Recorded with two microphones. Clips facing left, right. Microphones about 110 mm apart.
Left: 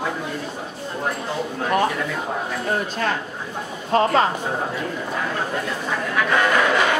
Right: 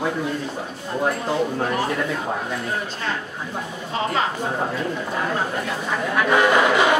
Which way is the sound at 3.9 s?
50° left (ahead or behind).